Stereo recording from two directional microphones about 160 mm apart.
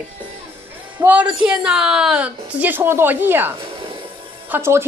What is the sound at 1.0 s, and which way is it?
A woman's voice, 10° right (ahead or behind).